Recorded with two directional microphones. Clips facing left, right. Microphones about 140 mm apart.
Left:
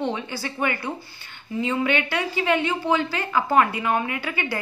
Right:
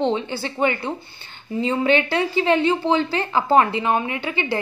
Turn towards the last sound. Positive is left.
turn(degrees=-25)  # may be behind; listen again after turning